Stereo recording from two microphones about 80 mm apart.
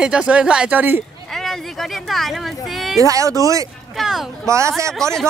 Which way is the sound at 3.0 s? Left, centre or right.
Right.